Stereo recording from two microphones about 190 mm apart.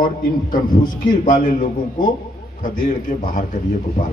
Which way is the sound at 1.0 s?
45° left (ahead or behind).